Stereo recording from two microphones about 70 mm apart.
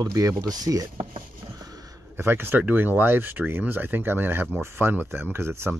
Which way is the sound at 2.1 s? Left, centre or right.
Right.